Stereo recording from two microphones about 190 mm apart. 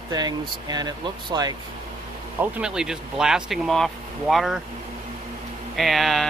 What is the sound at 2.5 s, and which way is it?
Speech, 5° right (ahead or behind).